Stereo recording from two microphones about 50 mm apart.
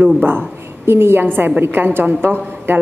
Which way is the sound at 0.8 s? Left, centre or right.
Right.